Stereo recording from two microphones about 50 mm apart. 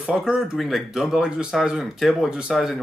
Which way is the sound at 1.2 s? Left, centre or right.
Centre.